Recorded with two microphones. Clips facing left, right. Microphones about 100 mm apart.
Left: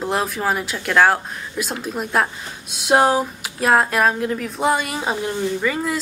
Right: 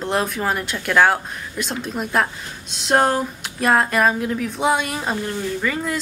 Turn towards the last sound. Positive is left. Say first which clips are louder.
# left 2 dB
turn(degrees=0)  # may be behind; listen again after turning